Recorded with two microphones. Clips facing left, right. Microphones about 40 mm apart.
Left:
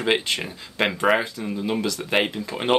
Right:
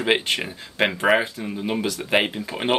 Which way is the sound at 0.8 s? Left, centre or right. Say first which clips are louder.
Right 1 dB; centre.